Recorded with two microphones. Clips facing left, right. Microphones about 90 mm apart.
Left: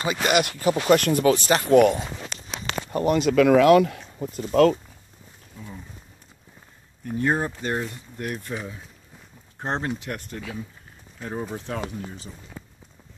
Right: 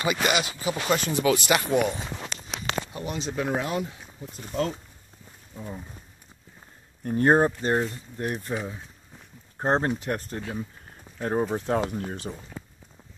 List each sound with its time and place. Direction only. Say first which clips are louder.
0.0 s speech: even; 30° left (ahead or behind)
0.3 s speech: left 5 dB; 60° left (ahead or behind)
1.2 s speech: left 3 dB; 35° left (ahead or behind)
1.7 s speech: left 8 dB; 55° left (ahead or behind); by 4.0 s 75° left (ahead or behind)
4.2 s speech: left 11 dB; 60° left (ahead or behind)
7.1 s speech: right 4 dB; 40° right (ahead or behind)
7.6 s speech: right 3 dB; 30° right (ahead or behind)
9.6 s speech: right 4 dB; 35° right (ahead or behind)
12.0 s speech: right 4 dB; 55° right (ahead or behind)